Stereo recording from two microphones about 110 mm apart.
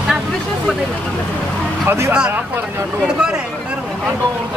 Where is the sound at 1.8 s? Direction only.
25° right (ahead or behind).